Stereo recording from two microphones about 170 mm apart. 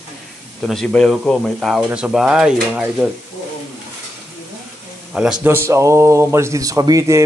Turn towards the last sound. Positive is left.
turn(degrees=-20)  # may be behind; listen again after turning